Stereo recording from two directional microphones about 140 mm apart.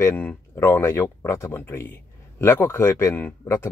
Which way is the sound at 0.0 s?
10° left (ahead or behind).